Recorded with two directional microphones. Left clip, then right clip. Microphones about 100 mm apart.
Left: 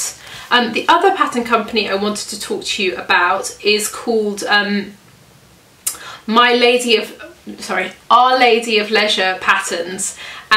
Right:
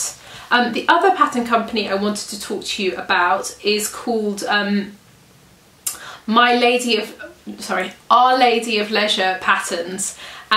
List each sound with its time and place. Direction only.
0.5 s speech: centre (ahead or behind)
5.9 s speech: centre (ahead or behind)